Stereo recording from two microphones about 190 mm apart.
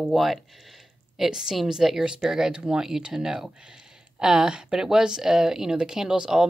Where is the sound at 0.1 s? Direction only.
Centre (ahead or behind).